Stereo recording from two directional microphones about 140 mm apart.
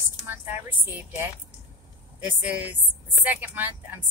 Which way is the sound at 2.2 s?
10° right (ahead or behind).